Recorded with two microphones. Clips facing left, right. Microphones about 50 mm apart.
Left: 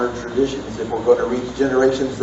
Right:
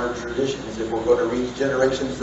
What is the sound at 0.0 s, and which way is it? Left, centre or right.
A man's voice, centre.